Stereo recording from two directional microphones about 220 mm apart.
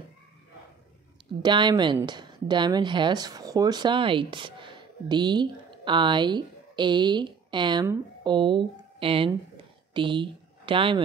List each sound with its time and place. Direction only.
1.4 s a woman's voice: 20° right (ahead or behind)